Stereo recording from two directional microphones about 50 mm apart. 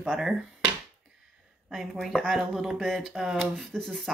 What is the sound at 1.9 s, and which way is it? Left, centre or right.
Speech, centre.